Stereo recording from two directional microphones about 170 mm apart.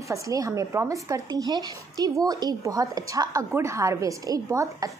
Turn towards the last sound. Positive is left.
turn(degrees=-20)  # may be behind; listen again after turning